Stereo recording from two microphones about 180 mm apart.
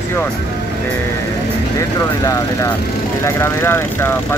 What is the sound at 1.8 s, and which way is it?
Speech, 15° left (ahead or behind).